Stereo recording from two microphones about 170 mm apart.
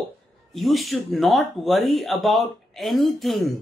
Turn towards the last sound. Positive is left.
turn(degrees=0)  # may be behind; listen again after turning